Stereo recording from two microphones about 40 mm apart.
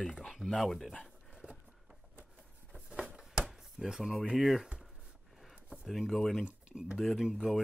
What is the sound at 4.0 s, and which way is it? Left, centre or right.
Speech, centre.